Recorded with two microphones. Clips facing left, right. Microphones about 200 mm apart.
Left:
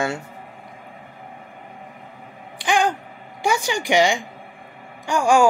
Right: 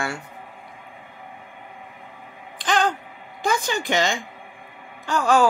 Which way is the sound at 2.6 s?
10° left (ahead or behind).